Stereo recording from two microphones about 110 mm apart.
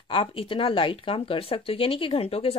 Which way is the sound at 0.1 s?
50° left (ahead or behind).